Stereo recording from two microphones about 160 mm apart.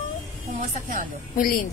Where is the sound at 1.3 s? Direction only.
60° left (ahead or behind).